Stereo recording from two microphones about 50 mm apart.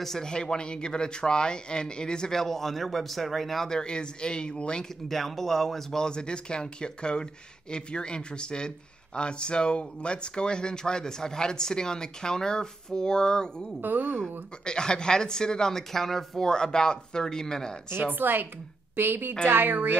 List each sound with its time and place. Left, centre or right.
0.0 s speech: centre
5.0 s speech: centre
13.7 s a woman's voice: right
14.6 s speech: centre
18.1 s a woman's voice: right